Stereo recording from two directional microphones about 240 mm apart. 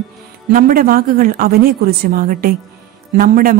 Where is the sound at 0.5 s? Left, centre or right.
Right.